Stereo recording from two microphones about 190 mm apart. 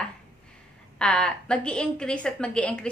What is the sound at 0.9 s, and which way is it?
A woman's voice, 5° left (ahead or behind).